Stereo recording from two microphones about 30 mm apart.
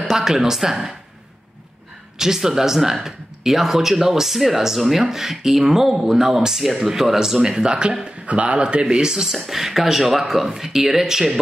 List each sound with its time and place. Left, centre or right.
0.1 s speech: centre
2.1 s speech: centre
6.9 s speech: centre
8.3 s a man's voice: right
8.5 s speech: right
8.9 s speech: centre